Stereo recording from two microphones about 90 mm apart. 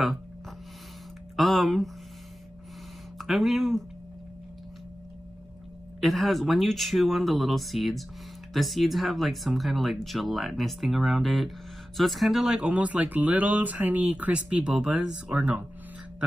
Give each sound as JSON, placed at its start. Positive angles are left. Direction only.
{"t": 1.3, "sound": "speech", "side_deg": 0}
{"t": 3.2, "sound": "speech", "side_deg": 0}
{"t": 5.9, "sound": "speech", "side_deg": 0}